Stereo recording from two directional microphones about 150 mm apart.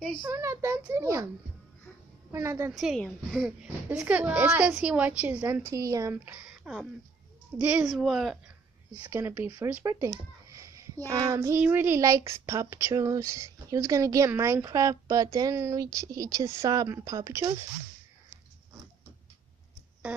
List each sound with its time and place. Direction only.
0.2 s a woman's voice: 15° right (ahead or behind)
2.3 s a woman's voice: 15° right (ahead or behind)
2.7 s a woman's voice: centre (ahead or behind)
6.4 s a sound: 5° right (ahead or behind)
7.5 s a woman's voice: 10° right (ahead or behind)
9.1 s a woman's voice: 15° right (ahead or behind)
10.5 s a sound: 20° right (ahead or behind)
11.6 s speech: 15° right (ahead or behind)